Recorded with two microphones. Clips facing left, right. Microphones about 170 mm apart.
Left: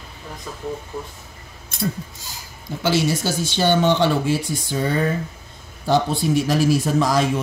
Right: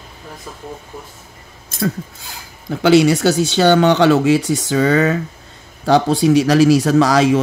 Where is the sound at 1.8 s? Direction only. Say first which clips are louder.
Right 5 dB; 65° right (ahead or behind).